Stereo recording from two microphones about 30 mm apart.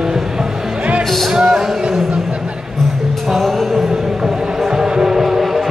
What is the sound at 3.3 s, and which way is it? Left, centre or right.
Music, centre.